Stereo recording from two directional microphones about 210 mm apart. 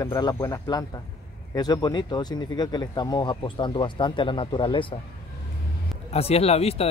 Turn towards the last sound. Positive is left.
turn(degrees=30)  # may be behind; listen again after turning